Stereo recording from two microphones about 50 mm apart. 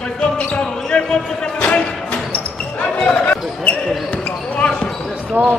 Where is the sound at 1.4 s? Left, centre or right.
Left.